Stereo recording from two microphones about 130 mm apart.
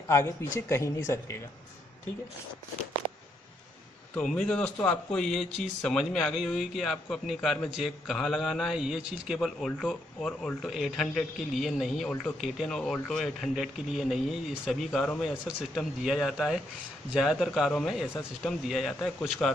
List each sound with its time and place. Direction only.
0.1 s speech: 20° left (ahead or behind)
4.1 s a man's voice: 5° left (ahead or behind)
12.1 s speech: 15° left (ahead or behind)
12.4 s a man's voice: centre (ahead or behind)